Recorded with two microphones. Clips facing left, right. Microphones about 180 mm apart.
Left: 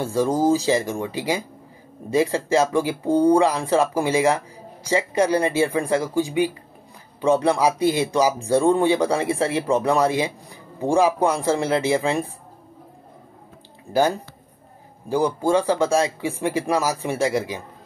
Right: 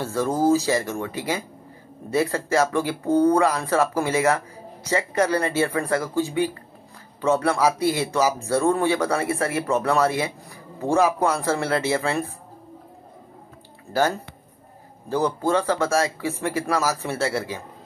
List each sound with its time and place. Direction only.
0.0 s speech: 15° left (ahead or behind)
2.3 s speech: 15° left (ahead or behind)
13.9 s speech: 15° left (ahead or behind)